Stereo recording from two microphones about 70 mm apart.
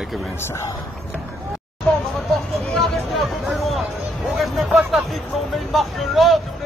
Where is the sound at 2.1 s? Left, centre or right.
Centre.